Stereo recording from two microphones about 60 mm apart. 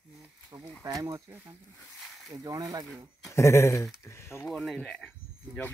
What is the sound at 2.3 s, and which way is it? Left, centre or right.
Speech, right.